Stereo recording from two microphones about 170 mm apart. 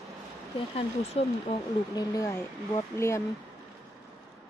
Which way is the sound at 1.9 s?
20° left (ahead or behind).